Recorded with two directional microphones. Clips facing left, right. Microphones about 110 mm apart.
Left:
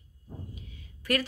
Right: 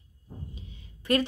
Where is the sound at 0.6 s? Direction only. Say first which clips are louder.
Right 1 dB; 25° right (ahead or behind).